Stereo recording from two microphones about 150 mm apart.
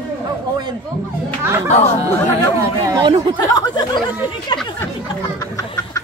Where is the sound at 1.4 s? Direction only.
15° right (ahead or behind).